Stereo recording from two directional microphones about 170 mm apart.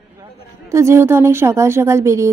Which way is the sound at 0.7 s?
15° right (ahead or behind).